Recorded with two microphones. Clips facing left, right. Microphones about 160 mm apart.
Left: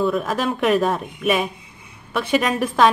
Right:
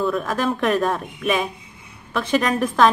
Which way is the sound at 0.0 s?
Centre (ahead or behind).